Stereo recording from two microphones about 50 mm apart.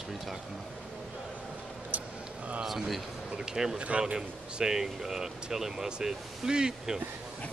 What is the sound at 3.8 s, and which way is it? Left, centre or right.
Speech, right.